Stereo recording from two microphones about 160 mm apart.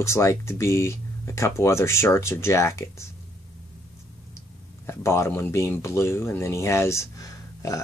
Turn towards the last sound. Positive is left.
turn(degrees=20)  # may be behind; listen again after turning